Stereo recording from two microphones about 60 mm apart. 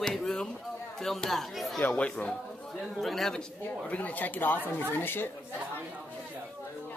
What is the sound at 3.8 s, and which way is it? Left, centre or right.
A woman's voice, left.